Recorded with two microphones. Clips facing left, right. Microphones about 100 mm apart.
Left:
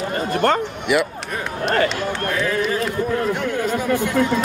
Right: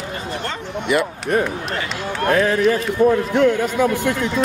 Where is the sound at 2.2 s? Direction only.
65° right (ahead or behind).